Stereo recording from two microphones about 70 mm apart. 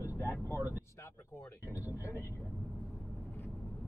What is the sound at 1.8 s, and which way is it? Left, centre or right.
Speech, left.